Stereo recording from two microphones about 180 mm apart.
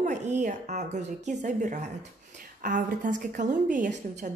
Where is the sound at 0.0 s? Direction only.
40° right (ahead or behind).